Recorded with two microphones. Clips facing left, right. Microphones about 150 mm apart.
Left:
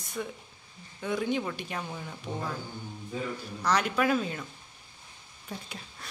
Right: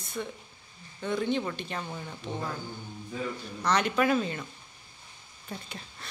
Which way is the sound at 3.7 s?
5° left (ahead or behind).